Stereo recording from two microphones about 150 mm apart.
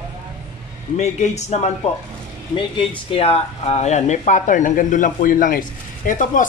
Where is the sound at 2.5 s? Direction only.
35° left (ahead or behind).